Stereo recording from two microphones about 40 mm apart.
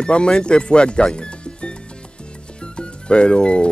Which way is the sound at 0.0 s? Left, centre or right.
Left.